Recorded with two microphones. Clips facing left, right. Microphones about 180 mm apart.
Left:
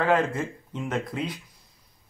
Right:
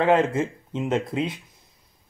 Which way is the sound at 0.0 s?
25° right (ahead or behind).